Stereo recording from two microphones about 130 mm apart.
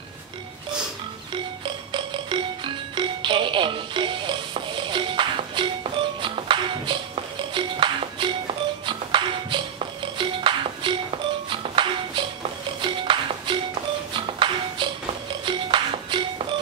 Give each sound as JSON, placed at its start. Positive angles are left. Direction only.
{"t": 1.9, "sound": "music", "side_deg": -40}